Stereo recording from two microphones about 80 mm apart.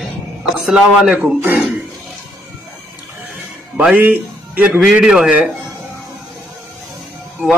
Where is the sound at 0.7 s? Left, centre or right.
Centre.